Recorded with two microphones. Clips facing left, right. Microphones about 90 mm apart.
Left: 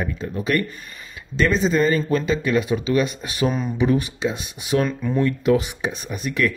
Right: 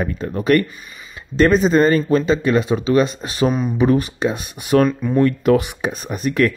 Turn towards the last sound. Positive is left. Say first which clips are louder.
# right 5 dB
turn(degrees=-40)  # may be behind; listen again after turning